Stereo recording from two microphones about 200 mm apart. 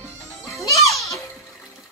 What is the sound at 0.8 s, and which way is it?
Music, centre (ahead or behind).